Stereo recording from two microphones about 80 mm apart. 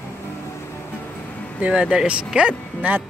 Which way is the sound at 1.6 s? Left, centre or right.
Centre.